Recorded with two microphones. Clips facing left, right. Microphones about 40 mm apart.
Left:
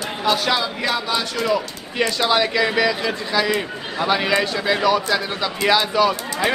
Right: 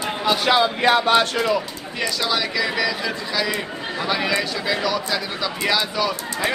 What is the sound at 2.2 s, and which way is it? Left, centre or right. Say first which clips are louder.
A man's voice: left 5 dB; centre.